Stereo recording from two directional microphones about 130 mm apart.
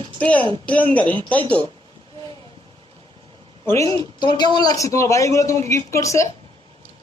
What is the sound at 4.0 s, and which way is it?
A man's voice, 35° left (ahead or behind).